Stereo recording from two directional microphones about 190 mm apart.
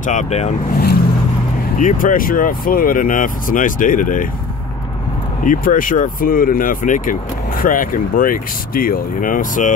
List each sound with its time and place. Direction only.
0.0 s speech: 40° left (ahead or behind)
5.4 s speech: 45° left (ahead or behind)